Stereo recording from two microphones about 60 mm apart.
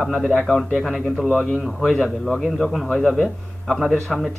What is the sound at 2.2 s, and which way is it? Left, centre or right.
Speech, centre.